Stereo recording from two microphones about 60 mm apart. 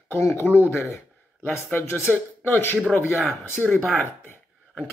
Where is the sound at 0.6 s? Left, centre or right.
Left.